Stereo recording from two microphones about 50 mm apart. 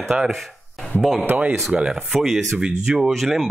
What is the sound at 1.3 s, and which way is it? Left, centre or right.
Speech, right.